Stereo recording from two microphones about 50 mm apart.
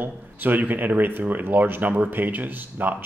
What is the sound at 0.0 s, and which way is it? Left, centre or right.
Speech, right.